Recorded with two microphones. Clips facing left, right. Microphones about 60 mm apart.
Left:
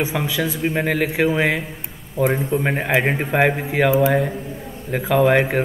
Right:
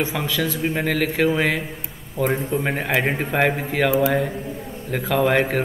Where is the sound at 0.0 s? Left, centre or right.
Centre.